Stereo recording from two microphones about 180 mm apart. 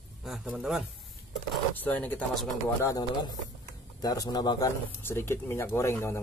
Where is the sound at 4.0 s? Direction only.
20° left (ahead or behind).